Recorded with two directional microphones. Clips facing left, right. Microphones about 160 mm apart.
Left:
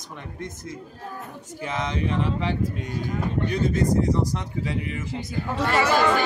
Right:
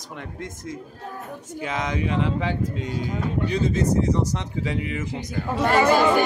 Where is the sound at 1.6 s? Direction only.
15° right (ahead or behind).